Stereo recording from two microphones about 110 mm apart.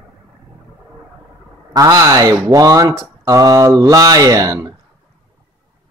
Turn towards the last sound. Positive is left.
turn(degrees=-30)  # may be behind; listen again after turning